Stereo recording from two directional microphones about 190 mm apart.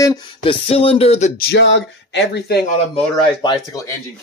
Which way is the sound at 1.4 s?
70° left (ahead or behind).